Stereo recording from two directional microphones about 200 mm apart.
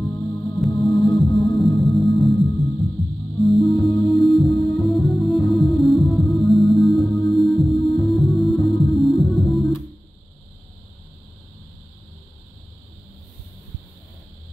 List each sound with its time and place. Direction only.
0.0 s music: 15° left (ahead or behind)
0.6 s music: centre (ahead or behind)